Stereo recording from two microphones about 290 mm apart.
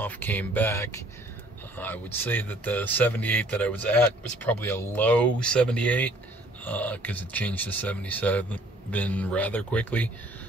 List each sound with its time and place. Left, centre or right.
0.0 s speech: centre